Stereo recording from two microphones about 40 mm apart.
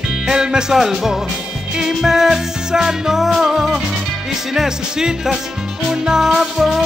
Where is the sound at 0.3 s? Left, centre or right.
Centre.